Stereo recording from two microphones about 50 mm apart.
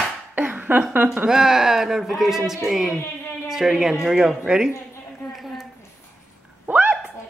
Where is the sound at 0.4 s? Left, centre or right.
Right.